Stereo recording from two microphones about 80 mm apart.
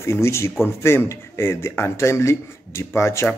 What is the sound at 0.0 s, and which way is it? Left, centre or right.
Speech, left.